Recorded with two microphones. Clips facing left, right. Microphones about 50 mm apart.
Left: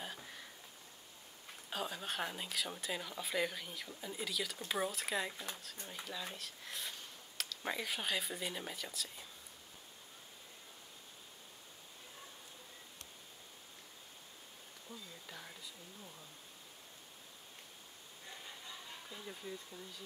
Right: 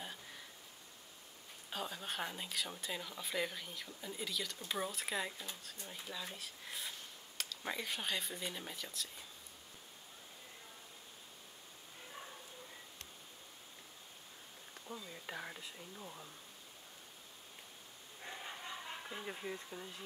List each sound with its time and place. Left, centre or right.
1.7 s speech: centre
15.2 s speech: right
18.3 s a sound: right